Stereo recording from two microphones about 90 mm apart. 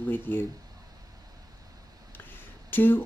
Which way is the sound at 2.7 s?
20° left (ahead or behind).